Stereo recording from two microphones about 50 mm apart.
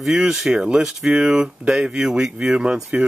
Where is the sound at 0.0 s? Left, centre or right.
Centre.